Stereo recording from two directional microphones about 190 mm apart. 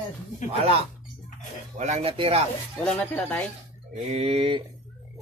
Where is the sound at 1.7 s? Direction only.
40° right (ahead or behind).